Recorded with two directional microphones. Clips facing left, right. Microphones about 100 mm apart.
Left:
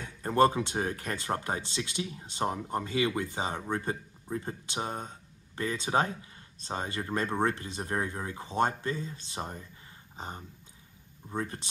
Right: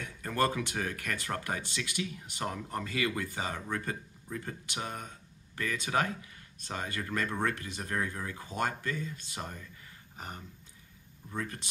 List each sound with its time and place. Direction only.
0.0 s speech: 30° left (ahead or behind)